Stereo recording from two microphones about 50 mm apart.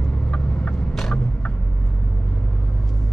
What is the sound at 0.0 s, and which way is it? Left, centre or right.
Vehicle, left.